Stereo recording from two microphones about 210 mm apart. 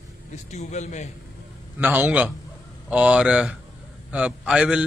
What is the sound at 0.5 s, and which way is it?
Speech, 35° left (ahead or behind).